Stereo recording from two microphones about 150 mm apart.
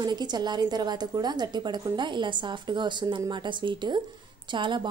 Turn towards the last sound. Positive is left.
turn(degrees=-30)  # may be behind; listen again after turning